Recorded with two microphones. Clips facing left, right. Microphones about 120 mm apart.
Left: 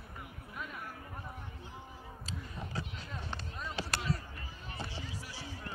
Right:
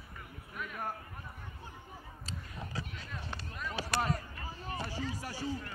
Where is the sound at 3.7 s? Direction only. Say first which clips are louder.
Right 4 dB; 45° right (ahead or behind).